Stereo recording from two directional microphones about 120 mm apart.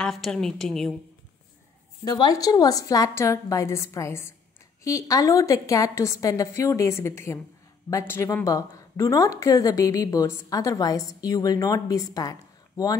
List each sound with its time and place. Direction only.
0.0 s a woman's voice: 5° left (ahead or behind)
2.0 s speech: 35° left (ahead or behind)